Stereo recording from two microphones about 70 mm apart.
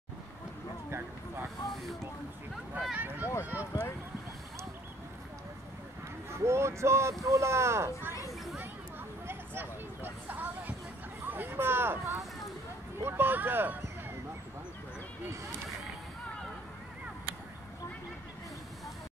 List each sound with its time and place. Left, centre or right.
0.8 s a sound: right
1.7 s speech: centre
2.9 s speech: right
6.4 s speech: right
9.3 s vehicle: right
11.2 s a sound: right
13.0 s speech: right